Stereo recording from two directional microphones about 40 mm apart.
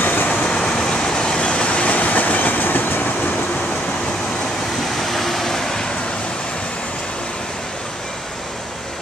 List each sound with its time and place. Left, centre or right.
0.0 s vehicle: left
0.3 s vehicle: left
4.9 s vehicle: centre